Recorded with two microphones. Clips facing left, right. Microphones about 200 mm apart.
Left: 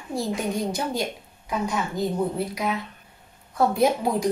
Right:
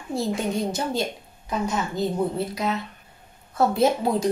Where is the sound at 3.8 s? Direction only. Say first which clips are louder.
Right 1 dB; 15° left (ahead or behind).